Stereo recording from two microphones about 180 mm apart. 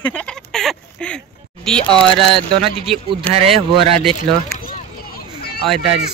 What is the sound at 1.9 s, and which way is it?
Speech, 30° right (ahead or behind).